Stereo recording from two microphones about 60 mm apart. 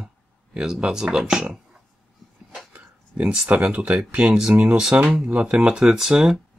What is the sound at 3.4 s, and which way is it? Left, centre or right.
Speech, centre.